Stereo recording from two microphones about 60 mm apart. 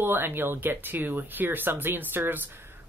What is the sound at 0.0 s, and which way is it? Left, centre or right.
Speech, right.